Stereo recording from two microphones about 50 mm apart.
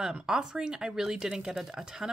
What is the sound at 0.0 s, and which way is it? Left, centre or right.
Speech, centre.